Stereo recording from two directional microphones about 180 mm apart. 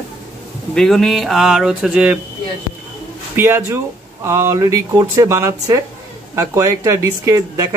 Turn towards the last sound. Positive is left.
turn(degrees=-15)  # may be behind; listen again after turning